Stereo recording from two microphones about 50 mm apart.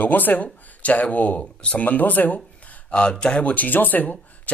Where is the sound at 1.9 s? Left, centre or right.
Left.